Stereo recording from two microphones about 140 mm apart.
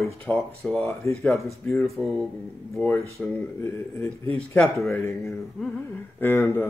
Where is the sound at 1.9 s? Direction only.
Centre (ahead or behind).